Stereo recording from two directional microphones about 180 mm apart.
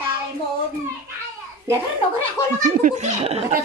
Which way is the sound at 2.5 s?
45° right (ahead or behind).